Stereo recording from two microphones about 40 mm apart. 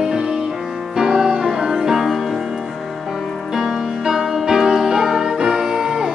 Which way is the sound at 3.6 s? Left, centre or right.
Centre.